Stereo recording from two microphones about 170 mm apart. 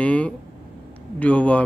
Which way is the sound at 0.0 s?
5° left (ahead or behind).